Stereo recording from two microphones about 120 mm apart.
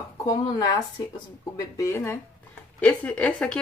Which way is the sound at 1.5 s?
25° left (ahead or behind).